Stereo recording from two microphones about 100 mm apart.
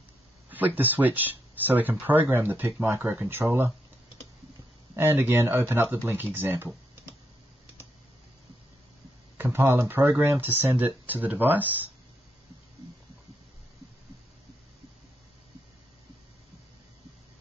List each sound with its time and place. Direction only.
0.5 s speech: 20° right (ahead or behind)
4.9 s speech: 20° right (ahead or behind)
9.4 s speech: 20° right (ahead or behind)